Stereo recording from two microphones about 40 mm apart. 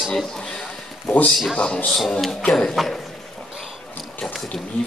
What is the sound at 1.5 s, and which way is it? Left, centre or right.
Speech, left.